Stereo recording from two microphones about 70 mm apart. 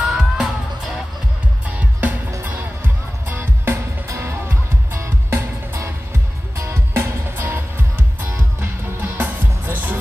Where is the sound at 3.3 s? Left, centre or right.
Right.